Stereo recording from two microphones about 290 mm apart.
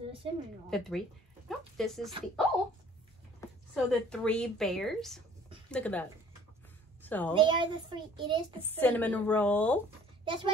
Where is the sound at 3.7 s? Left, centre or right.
Centre.